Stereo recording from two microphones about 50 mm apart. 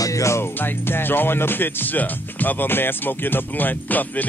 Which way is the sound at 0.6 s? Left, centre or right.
Left.